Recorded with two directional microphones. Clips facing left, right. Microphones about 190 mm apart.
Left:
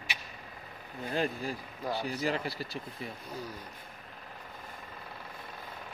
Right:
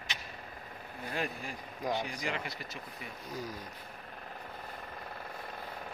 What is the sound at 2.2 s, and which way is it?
Speech, 35° left (ahead or behind).